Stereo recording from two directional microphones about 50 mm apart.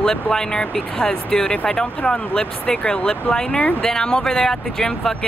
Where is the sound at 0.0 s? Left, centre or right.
Centre.